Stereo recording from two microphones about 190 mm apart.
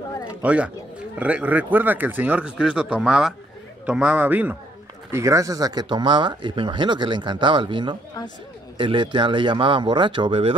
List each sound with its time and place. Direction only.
0.4 s speech: 5° right (ahead or behind); by 10.5 s 25° right (ahead or behind)